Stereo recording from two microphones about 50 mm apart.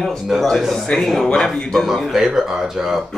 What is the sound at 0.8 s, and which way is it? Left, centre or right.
Speech, centre.